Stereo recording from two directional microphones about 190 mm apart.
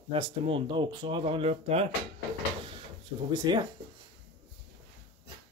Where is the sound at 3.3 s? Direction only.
20° right (ahead or behind).